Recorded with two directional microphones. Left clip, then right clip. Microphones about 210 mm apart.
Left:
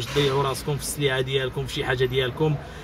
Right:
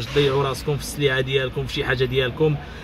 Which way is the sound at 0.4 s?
15° right (ahead or behind).